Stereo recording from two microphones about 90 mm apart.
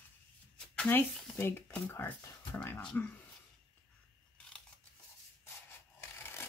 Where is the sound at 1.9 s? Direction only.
20° left (ahead or behind).